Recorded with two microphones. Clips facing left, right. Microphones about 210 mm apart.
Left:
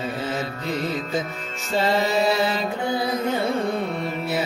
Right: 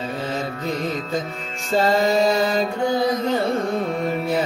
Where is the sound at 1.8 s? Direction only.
45° right (ahead or behind).